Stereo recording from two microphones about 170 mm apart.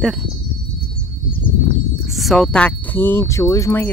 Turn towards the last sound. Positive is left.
turn(degrees=15)  # may be behind; listen again after turning